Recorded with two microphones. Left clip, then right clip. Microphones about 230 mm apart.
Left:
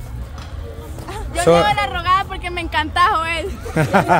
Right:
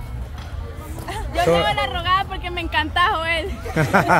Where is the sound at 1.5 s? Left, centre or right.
Centre.